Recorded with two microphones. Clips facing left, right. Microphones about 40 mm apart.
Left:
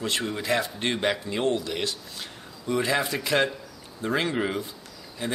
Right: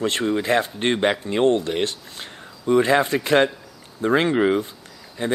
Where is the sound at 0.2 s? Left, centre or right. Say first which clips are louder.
Right 6 dB; right.